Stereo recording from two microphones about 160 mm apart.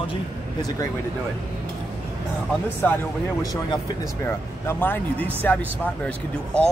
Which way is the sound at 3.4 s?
25° left (ahead or behind).